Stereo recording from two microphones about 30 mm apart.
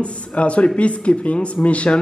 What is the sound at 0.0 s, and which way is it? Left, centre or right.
A man's voice, left.